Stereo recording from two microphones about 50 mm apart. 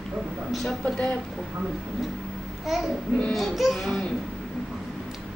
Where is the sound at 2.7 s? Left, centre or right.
Centre.